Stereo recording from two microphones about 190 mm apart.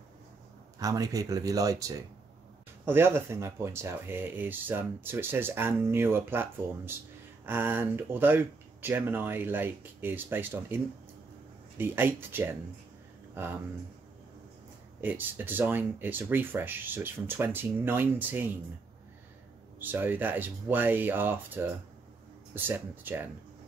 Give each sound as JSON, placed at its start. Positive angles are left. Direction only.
{"t": 0.7, "sound": "speech", "side_deg": -20}
{"t": 11.8, "sound": "speech", "side_deg": -10}
{"t": 15.0, "sound": "speech", "side_deg": -10}
{"t": 19.8, "sound": "speech", "side_deg": -10}